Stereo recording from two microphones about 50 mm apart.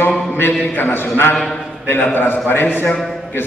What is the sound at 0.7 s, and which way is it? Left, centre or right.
A man's voice, left.